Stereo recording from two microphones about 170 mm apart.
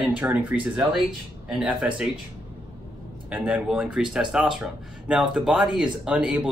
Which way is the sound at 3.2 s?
5° right (ahead or behind).